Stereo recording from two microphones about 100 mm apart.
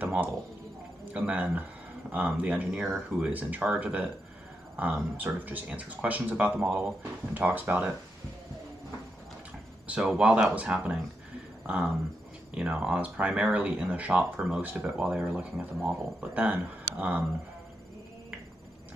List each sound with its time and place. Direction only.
0.0 s a sound: 15° right (ahead or behind)
1.1 s speech: 15° right (ahead or behind)
9.8 s speech: 10° right (ahead or behind)